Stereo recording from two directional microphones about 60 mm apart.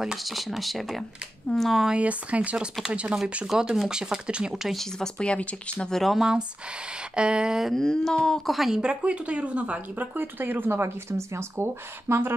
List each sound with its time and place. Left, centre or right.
0.0 s speech: centre
1.9 s speech: right
4.9 s speech: centre
5.9 s speech: centre
7.2 s speech: centre
7.7 s speech: centre
8.5 s speech: centre
8.8 s speech: centre
10.1 s speech: right